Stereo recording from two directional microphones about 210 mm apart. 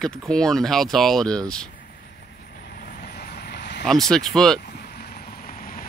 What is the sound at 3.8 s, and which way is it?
Speech, centre (ahead or behind).